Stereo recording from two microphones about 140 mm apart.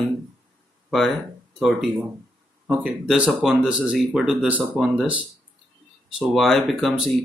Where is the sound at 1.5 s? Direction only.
Centre (ahead or behind).